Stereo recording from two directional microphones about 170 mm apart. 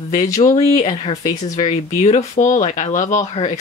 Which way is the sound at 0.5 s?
45° left (ahead or behind).